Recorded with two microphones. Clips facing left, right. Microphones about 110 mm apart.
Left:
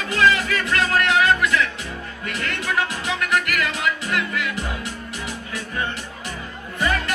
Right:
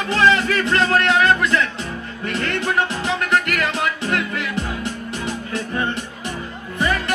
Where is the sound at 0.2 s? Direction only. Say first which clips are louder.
Right 2 dB; 30° right (ahead or behind).